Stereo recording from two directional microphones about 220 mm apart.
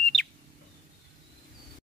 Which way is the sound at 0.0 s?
5° left (ahead or behind).